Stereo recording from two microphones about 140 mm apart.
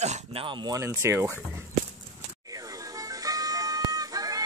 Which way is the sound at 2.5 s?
25° right (ahead or behind).